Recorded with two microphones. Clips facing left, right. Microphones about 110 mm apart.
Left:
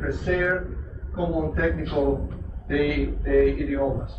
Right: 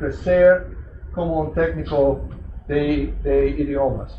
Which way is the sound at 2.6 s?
40° right (ahead or behind).